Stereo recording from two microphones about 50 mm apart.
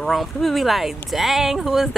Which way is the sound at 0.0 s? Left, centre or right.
Centre.